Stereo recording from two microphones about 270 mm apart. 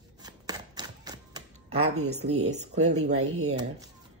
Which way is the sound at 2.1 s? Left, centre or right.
Right.